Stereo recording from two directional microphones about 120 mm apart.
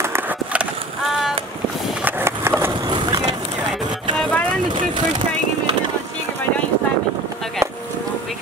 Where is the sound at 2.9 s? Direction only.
35° right (ahead or behind).